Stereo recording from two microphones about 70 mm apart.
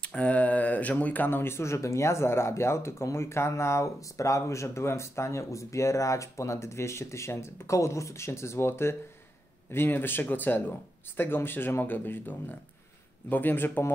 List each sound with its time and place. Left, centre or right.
0.0 s speech: centre